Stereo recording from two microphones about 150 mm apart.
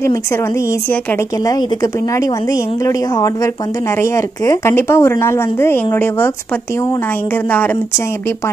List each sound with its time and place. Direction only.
1.4 s a woman's voice: 20° left (ahead or behind)